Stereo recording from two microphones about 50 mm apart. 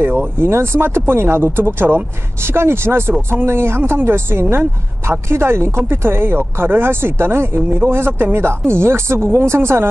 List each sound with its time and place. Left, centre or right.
0.0 s speech: right